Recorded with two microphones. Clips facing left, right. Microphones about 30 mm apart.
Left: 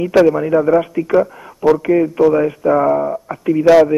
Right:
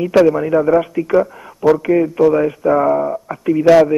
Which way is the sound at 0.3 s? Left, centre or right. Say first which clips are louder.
Even; centre.